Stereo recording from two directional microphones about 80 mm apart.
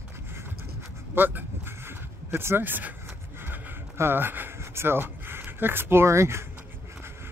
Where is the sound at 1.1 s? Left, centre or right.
Right.